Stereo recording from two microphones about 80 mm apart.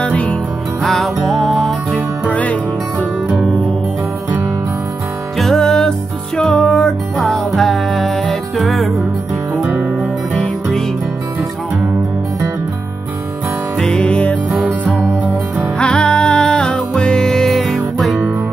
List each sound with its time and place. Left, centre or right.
0.0 s music: centre
0.8 s music: centre
2.2 s music: centre
5.4 s music: centre
10.3 s music: centre
13.7 s music: centre
14.5 s music: centre
15.8 s music: centre